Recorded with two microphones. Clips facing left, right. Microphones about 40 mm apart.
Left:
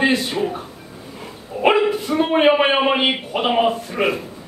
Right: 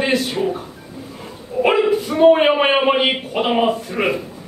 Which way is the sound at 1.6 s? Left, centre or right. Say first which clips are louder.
Right 1 dB; centre.